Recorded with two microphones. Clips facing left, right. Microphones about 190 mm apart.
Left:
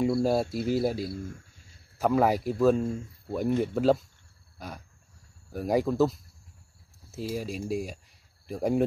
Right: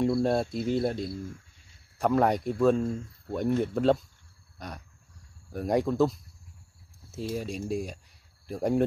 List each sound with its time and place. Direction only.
0.0 s speech: centre (ahead or behind)
4.6 s a sound: centre (ahead or behind)
5.5 s speech: centre (ahead or behind)